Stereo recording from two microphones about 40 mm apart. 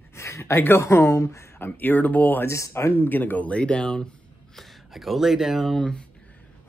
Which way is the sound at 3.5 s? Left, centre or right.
Left.